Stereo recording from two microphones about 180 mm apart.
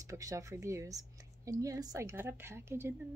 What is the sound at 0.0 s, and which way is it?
Speech, 20° right (ahead or behind).